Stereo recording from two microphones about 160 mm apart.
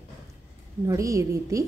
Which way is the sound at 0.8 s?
20° right (ahead or behind).